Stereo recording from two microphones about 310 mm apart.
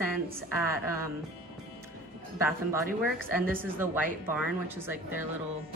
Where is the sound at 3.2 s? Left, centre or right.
Centre.